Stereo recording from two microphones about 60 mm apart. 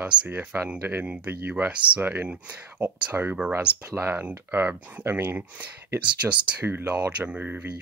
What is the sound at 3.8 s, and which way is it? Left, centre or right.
Speech, right.